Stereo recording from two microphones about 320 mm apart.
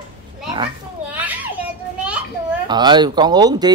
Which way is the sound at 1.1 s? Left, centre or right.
Centre.